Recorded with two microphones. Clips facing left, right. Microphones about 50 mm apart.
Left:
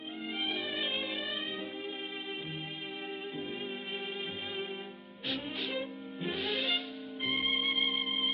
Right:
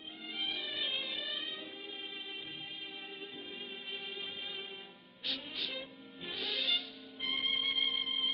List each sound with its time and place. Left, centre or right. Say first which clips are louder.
0.8 s music: left 4 dB; centre
5.7 s music: left 7 dB; centre
6.4 s music: left 2 dB; left
7.9 s music: left 3 dB; centre